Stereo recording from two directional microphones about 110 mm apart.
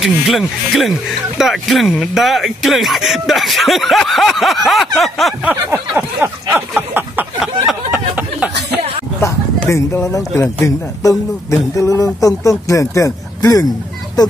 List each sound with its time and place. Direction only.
0.0 s speech: centre (ahead or behind)
5.4 s a sound: 15° right (ahead or behind)
9.2 s speech: 25° left (ahead or behind)